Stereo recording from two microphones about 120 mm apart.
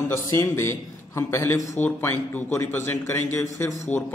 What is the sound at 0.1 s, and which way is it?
A man's voice, 25° left (ahead or behind).